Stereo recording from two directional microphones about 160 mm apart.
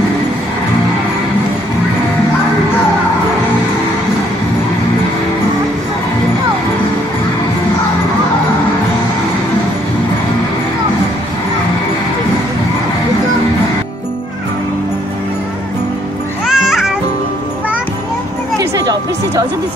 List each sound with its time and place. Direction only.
16.4 s music: 5° right (ahead or behind)
18.6 s music: 20° right (ahead or behind)